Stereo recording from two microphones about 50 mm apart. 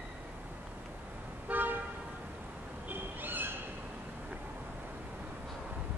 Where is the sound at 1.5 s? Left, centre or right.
Right.